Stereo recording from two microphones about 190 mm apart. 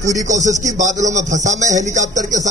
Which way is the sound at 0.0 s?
40° right (ahead or behind).